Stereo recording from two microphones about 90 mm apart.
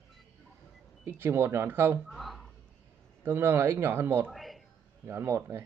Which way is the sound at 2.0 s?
Centre (ahead or behind).